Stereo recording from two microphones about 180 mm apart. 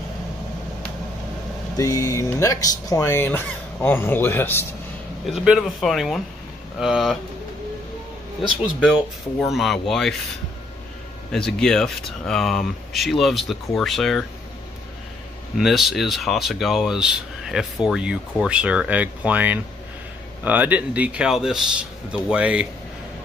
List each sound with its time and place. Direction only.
1.8 s speech: 20° left (ahead or behind)
5.2 s speech: centre (ahead or behind)
8.7 s speech: centre (ahead or behind)
11.3 s speech: 5° left (ahead or behind)
15.5 s speech: centre (ahead or behind)